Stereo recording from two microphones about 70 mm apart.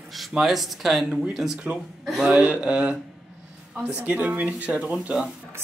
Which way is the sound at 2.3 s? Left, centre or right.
Centre.